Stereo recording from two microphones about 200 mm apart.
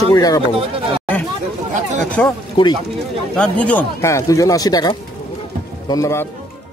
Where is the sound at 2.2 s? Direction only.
5° left (ahead or behind).